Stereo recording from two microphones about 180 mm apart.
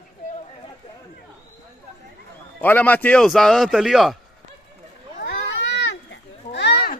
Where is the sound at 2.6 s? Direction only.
10° left (ahead or behind).